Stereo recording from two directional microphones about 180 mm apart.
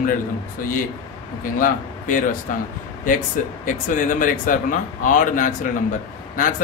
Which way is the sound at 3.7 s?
45° left (ahead or behind).